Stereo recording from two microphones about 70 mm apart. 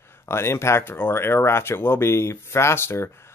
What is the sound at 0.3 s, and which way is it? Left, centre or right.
Speech, left.